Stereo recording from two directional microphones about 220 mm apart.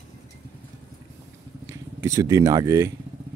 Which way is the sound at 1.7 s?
15° right (ahead or behind).